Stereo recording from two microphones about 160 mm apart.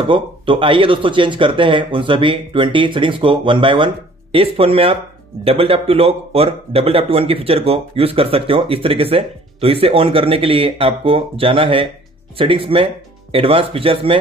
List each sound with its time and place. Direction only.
0.1 s speech: 30° right (ahead or behind)